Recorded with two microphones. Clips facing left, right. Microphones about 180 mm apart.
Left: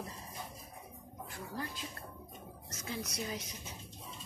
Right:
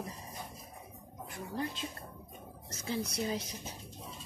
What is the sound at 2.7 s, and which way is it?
Speech, 30° right (ahead or behind).